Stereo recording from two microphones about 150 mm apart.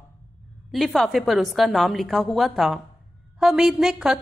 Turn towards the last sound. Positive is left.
turn(degrees=-5)  # may be behind; listen again after turning